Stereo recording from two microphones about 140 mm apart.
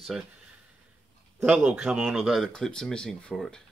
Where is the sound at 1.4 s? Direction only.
10° right (ahead or behind).